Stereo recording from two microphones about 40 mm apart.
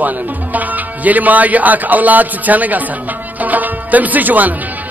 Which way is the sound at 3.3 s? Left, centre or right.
Right.